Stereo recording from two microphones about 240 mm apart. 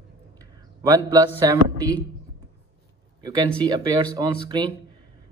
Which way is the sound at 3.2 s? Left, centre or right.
Centre.